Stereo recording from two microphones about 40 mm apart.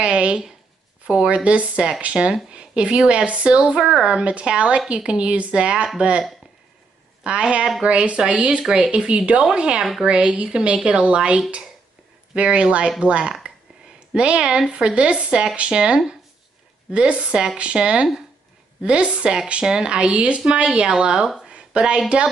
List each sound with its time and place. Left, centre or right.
0.0 s speech: right
2.2 s speech: right
7.2 s speech: right
20.1 s speech: right
21.5 s a sound: right